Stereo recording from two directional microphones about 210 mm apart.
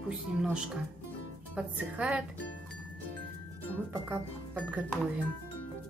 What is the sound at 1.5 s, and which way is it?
Speech, 5° right (ahead or behind).